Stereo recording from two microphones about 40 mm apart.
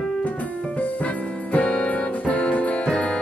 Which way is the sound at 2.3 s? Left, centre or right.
Left.